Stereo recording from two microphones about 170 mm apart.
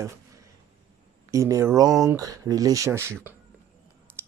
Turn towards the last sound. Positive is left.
turn(degrees=-15)  # may be behind; listen again after turning